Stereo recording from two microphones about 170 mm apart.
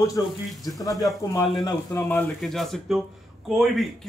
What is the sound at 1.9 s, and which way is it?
Speech, 10° left (ahead or behind).